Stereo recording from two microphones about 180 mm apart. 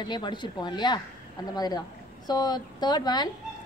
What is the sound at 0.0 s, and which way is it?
Speech, 25° left (ahead or behind).